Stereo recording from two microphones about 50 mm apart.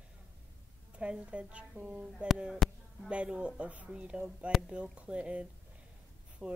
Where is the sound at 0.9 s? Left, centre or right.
Right.